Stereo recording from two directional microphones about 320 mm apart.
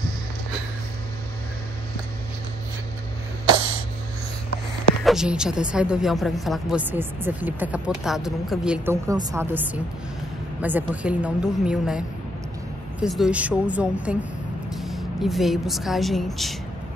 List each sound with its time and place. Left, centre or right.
3.4 s a sound: right
5.0 s speech: centre
13.0 s speech: centre